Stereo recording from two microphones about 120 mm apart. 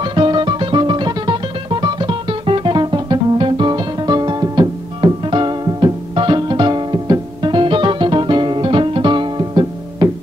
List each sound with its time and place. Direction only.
0.0 s music: 40° right (ahead or behind)